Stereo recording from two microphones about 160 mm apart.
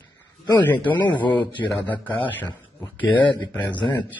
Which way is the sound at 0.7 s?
10° left (ahead or behind).